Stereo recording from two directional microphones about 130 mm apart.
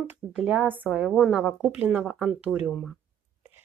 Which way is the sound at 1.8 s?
15° right (ahead or behind).